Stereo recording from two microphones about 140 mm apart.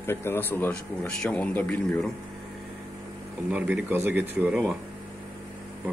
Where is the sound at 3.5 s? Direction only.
10° right (ahead or behind).